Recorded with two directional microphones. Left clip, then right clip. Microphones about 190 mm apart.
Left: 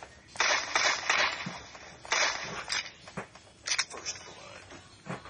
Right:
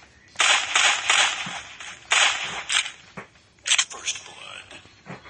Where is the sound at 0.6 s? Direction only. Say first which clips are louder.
Right 8 dB; centre (ahead or behind).